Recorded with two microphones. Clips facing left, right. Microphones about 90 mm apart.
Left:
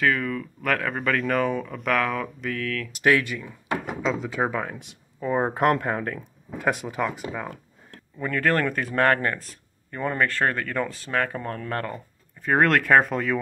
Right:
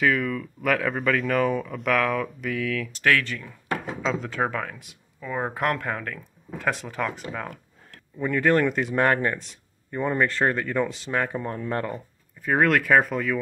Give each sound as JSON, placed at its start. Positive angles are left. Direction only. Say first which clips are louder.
{"t": 0.0, "sound": "speech", "louder": "right 1 dB", "side_deg": 0}
{"t": 2.9, "sound": "speech", "louder": "left 4 dB", "side_deg": 20}
{"t": 4.6, "sound": "speech", "louder": "left 2 dB", "side_deg": 25}
{"t": 6.7, "sound": "speech", "louder": "left 2 dB", "side_deg": 15}
{"t": 8.2, "sound": "speech", "louder": "right 2 dB", "side_deg": -15}
{"t": 12.4, "sound": "speech", "louder": "left 1 dB", "side_deg": 0}